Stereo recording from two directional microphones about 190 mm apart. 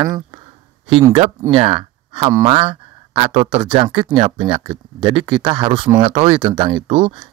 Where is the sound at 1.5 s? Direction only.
25° right (ahead or behind).